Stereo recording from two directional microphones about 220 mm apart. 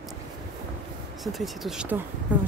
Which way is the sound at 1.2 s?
Centre (ahead or behind).